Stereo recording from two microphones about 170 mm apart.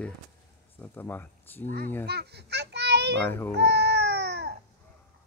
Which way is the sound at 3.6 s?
90° right.